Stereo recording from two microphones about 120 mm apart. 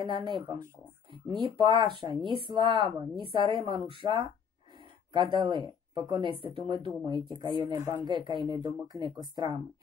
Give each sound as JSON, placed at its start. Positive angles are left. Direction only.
{"t": 0.0, "sound": "speech", "side_deg": -45}